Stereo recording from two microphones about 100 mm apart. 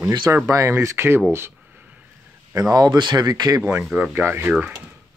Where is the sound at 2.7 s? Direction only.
40° right (ahead or behind).